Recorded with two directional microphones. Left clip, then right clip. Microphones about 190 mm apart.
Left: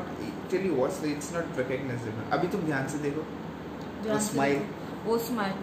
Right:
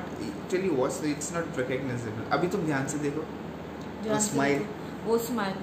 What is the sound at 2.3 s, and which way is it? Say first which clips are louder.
Speech: right 1 dB; 20° right (ahead or behind).